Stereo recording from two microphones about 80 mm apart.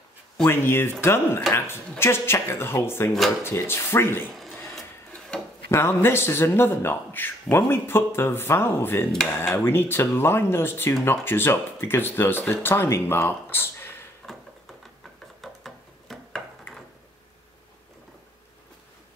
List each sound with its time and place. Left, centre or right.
0.5 s speech: left
5.7 s a man's voice: left
9.1 s cutlery: centre
9.5 s a man's voice: left
15.4 s a sound: centre